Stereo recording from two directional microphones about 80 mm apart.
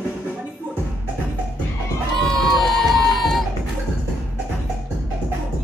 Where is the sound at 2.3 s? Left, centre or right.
Centre.